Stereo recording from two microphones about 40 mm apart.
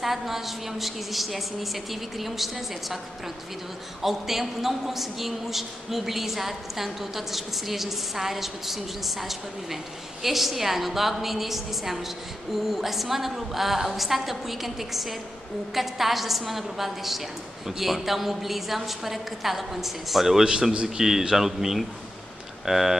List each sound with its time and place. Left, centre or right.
0.0 s a man's voice: centre
4.0 s a man's voice: centre
20.7 s a man's voice: centre